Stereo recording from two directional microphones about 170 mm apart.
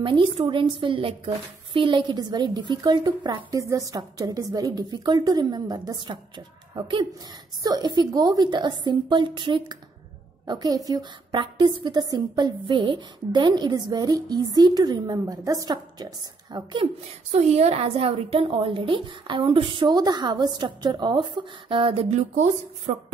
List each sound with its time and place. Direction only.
0.0 s speech: 30° right (ahead or behind)
22.3 s speech: 40° right (ahead or behind)